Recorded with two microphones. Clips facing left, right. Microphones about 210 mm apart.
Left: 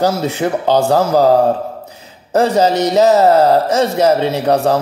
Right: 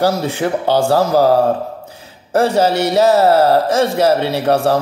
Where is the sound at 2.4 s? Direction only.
15° left (ahead or behind).